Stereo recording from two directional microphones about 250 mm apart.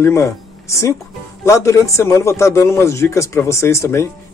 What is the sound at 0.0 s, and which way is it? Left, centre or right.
A man's voice, centre.